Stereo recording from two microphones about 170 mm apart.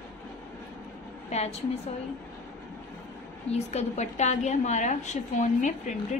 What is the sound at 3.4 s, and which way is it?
A woman's voice, 40° left (ahead or behind).